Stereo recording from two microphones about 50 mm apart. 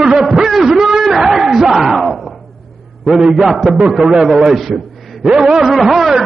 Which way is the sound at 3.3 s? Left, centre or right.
Centre.